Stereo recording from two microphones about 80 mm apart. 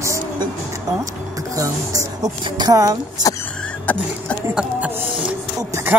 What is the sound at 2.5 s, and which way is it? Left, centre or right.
Speech, right.